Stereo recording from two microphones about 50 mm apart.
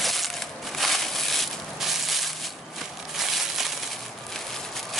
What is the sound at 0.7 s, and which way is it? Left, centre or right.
Crushing, centre.